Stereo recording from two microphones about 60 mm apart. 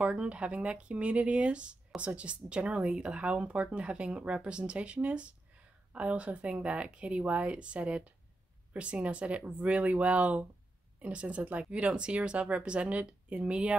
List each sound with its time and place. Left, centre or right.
0.0 s speech: centre